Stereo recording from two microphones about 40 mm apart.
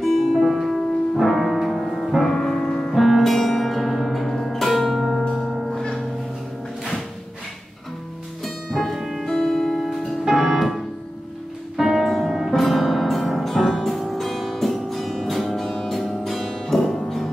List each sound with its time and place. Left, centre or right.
0.0 s music: centre
0.6 s music: centre
5.7 s music: centre
8.5 s music: centre
9.2 s music: centre
9.8 s music: centre